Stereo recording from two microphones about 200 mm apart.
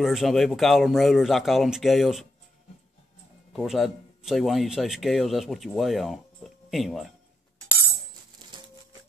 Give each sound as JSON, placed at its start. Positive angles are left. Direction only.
{"t": 0.0, "sound": "speech", "side_deg": 0}
{"t": 3.5, "sound": "speech", "side_deg": 0}
{"t": 8.4, "sound": "music", "side_deg": -20}